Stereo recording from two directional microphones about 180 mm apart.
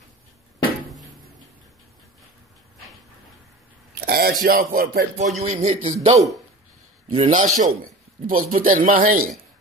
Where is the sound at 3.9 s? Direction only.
60° right (ahead or behind).